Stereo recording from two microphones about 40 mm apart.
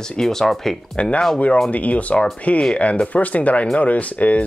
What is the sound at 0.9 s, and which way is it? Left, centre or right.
Speech, left.